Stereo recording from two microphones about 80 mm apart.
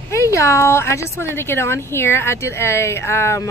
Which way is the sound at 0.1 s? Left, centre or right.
Left.